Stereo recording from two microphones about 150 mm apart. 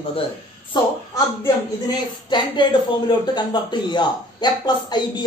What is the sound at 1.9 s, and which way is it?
A woman's voice, 30° left (ahead or behind).